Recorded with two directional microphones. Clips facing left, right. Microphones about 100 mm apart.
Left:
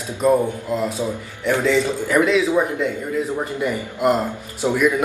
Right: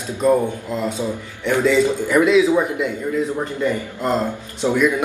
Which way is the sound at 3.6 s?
15° left (ahead or behind).